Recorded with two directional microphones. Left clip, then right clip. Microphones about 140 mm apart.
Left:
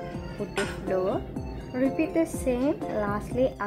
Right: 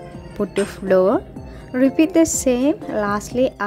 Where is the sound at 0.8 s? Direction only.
55° right (ahead or behind).